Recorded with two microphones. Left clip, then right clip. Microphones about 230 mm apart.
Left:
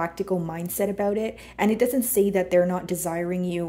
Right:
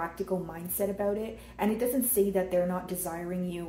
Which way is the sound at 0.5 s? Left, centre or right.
Left.